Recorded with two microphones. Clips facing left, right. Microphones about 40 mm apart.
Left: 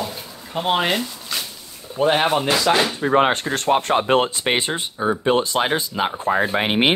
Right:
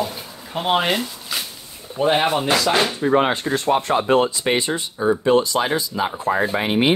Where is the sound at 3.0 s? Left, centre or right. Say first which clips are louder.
Left 1 dB; left.